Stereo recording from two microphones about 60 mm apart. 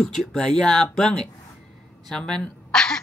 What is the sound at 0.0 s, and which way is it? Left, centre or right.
A woman's voice, centre.